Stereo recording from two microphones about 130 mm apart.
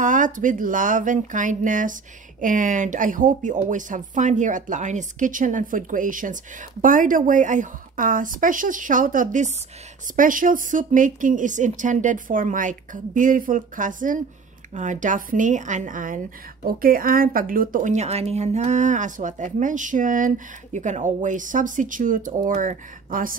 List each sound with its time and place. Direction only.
0.0 s a woman's voice: 90° right
14.7 s a woman's voice: 70° right (ahead or behind); by 23.3 s 90° right